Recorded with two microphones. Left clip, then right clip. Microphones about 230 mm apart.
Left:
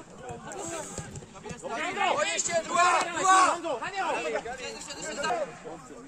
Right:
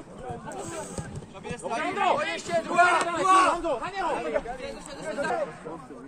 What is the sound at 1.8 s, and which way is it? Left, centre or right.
Speech, right.